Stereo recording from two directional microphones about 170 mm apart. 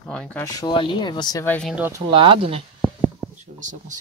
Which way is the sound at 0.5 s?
25° left (ahead or behind).